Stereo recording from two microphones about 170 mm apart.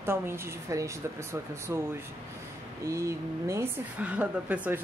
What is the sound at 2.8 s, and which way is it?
Speech, 15° right (ahead or behind).